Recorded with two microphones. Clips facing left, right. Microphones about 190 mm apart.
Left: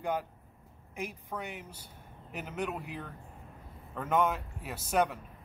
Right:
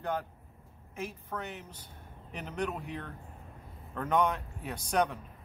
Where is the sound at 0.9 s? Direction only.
15° left (ahead or behind).